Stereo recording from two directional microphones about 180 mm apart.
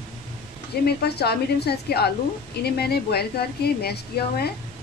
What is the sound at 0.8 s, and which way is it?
A woman's voice, 65° left (ahead or behind).